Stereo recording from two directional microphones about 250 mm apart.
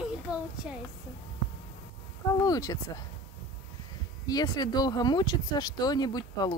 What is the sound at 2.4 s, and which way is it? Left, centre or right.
Speech, centre.